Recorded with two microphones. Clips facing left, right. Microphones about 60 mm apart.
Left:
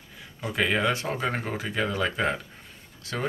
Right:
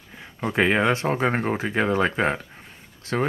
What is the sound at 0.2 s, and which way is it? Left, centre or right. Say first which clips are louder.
Speech: right 5 dB; right.